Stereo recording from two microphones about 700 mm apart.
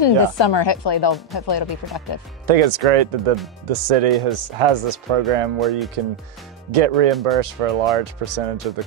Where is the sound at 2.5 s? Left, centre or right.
Right.